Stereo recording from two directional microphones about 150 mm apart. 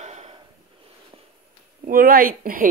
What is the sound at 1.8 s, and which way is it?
Speech, 80° right.